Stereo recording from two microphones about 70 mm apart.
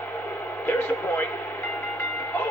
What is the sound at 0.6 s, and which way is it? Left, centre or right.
Speech, left.